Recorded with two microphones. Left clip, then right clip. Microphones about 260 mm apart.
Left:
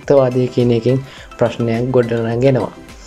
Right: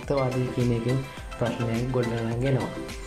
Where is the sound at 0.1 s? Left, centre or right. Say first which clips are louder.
Left 14 dB; left.